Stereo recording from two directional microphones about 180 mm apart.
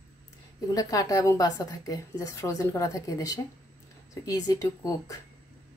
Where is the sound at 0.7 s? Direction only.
20° left (ahead or behind).